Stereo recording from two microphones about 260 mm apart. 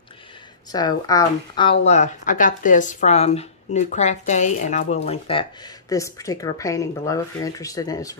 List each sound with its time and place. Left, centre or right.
0.7 s a woman's voice: centre